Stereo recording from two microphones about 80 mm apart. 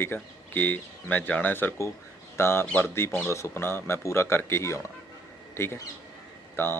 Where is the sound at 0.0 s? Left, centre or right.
Left.